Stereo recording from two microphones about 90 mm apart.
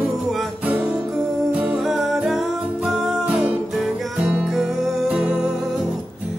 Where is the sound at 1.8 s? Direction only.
Centre (ahead or behind).